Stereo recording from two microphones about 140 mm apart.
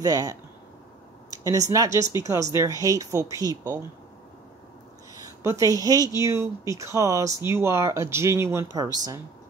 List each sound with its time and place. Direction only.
0.0 s speech: 25° right (ahead or behind)
5.1 s speech: 20° right (ahead or behind)